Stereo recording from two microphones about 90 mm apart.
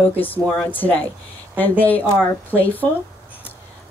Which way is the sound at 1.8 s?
20° left (ahead or behind).